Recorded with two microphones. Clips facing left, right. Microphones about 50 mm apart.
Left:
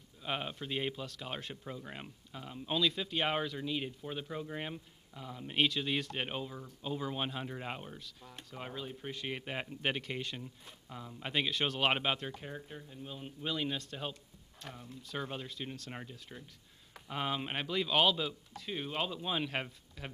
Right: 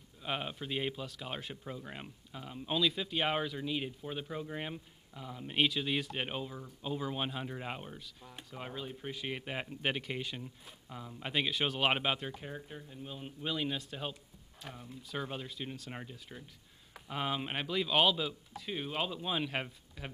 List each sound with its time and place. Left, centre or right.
0.2 s speech: centre